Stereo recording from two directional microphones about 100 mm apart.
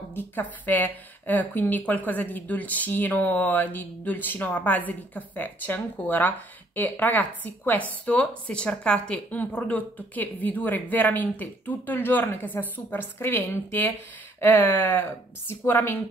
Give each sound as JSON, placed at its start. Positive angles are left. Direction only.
{"t": 0.1, "sound": "a woman's voice", "side_deg": 20}